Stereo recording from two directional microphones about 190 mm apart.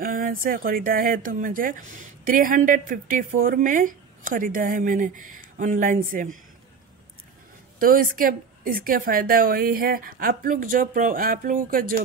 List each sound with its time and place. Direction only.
0.0 s a woman's voice: 45° right (ahead or behind)
7.8 s a woman's voice: 50° right (ahead or behind)